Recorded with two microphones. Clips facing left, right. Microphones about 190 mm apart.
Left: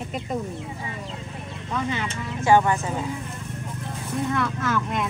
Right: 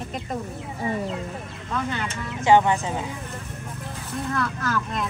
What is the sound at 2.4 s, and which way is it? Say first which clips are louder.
Speech: right 1 dB; 20° right (ahead or behind).